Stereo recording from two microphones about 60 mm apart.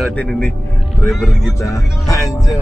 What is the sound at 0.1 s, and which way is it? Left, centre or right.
Speech, centre.